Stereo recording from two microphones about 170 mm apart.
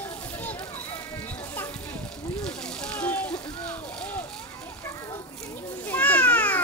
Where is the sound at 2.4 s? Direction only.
5° left (ahead or behind).